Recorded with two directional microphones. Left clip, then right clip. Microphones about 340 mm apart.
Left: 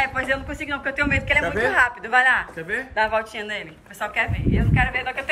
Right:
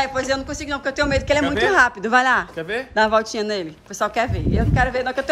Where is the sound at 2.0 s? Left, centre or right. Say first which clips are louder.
Right 1 dB; centre.